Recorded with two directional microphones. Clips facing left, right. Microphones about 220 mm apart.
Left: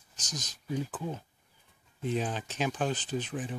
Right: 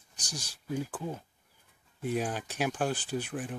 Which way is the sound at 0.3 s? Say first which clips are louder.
Even; 10° right (ahead or behind).